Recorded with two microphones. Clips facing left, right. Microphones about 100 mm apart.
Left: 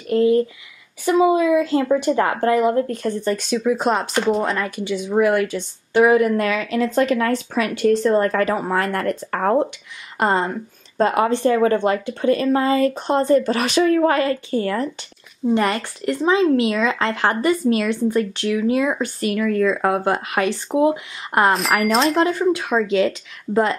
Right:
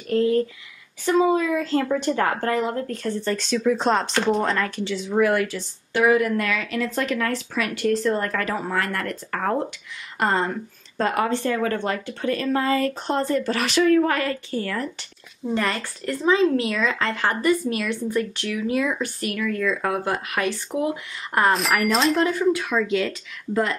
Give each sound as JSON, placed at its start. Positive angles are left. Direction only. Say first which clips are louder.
{"t": 0.1, "sound": "speech", "louder": "left 4 dB", "side_deg": 10}
{"t": 9.3, "sound": "speech", "louder": "left 5 dB", "side_deg": 35}
{"t": 10.1, "sound": "a woman's voice", "louder": "left 3 dB", "side_deg": 20}
{"t": 21.5, "sound": "speech", "louder": "left 3 dB", "side_deg": 0}
{"t": 22.2, "sound": "speech", "louder": "left 2 dB", "side_deg": 30}